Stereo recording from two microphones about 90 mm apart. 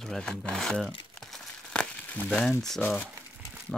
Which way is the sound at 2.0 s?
20° left (ahead or behind).